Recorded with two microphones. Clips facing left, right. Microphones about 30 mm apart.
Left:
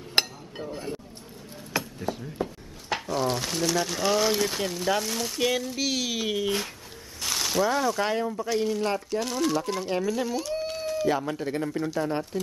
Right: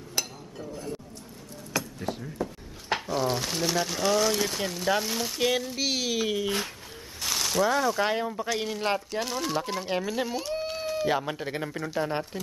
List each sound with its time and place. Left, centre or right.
0.2 s chink: left
0.6 s speech: left
2.0 s a sound: centre
3.1 s speech: centre
9.2 s speech: centre